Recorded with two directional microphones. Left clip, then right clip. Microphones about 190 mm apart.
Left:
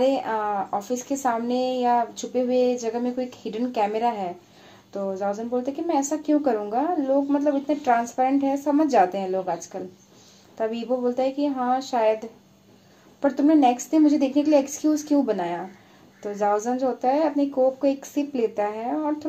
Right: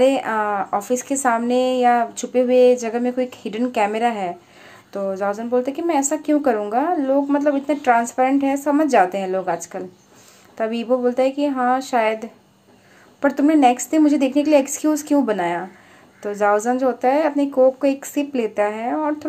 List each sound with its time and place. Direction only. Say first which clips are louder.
0.0 s a woman's voice: right 5 dB; 20° right (ahead or behind)